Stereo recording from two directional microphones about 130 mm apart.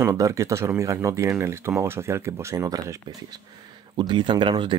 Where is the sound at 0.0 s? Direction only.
25° right (ahead or behind).